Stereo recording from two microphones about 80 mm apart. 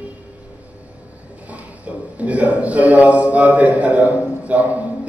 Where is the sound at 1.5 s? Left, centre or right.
Centre.